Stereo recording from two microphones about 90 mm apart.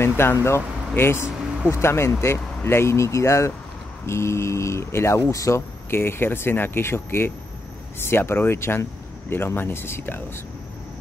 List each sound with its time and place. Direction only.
0.0 s speech: 25° left (ahead or behind)
5.9 s speech: 25° left (ahead or behind)